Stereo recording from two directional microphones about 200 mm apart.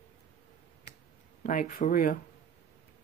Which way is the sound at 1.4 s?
40° left (ahead or behind).